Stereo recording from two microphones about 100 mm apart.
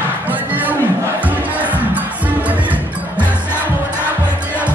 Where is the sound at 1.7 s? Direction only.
15° right (ahead or behind).